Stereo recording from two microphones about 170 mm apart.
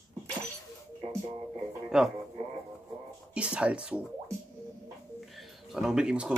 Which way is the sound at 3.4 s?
5° right (ahead or behind).